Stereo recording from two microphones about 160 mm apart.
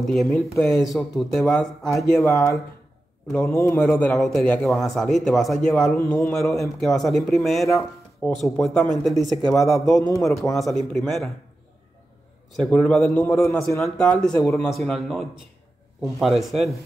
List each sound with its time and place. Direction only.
0.0 s a man's voice: centre (ahead or behind)
4.2 s speech: centre (ahead or behind)
9.9 s a man's voice: 20° left (ahead or behind)
10.5 s speech: centre (ahead or behind)
12.5 s a man's voice: 5° left (ahead or behind)
14.7 s speech: centre (ahead or behind)